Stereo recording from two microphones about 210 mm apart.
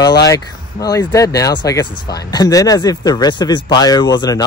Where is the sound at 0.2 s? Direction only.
15° left (ahead or behind).